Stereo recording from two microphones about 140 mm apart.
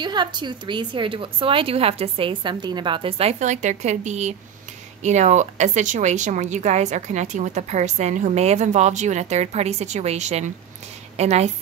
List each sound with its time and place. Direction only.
0.0 s a woman's voice: 30° right (ahead or behind); by 11.5 s 50° right (ahead or behind)